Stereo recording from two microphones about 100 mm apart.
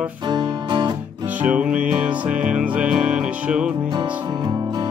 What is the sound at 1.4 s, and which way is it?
Music, 15° right (ahead or behind).